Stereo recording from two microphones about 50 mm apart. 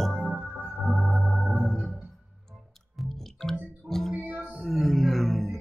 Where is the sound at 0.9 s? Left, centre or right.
Centre.